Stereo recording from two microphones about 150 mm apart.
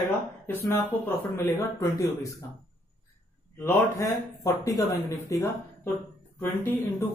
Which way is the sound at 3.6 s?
20° left (ahead or behind).